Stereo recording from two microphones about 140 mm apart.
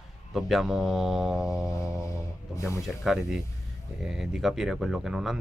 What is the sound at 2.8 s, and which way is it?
Speech, centre (ahead or behind).